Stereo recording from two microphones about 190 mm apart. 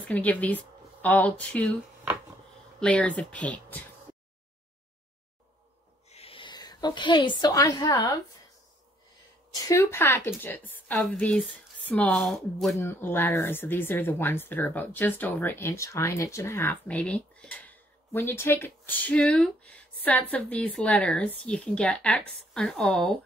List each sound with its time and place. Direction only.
0.0 s speech: 10° left (ahead or behind)
2.8 s speech: 5° left (ahead or behind)
6.0 s a sound: 30° left (ahead or behind)
9.7 s speech: 15° left (ahead or behind)
12.7 s a woman's voice: 10° left (ahead or behind)